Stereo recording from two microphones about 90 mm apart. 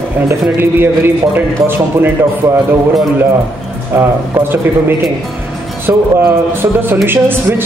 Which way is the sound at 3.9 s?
25° right (ahead or behind).